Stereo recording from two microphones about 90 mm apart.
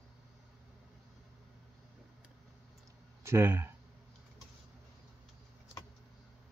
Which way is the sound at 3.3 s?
25° right (ahead or behind).